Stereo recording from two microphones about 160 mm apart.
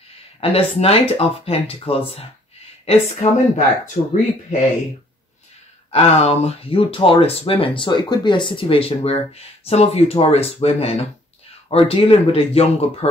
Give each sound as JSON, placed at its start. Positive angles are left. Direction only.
{"t": 0.4, "sound": "speech", "side_deg": 40}
{"t": 5.9, "sound": "speech", "side_deg": 40}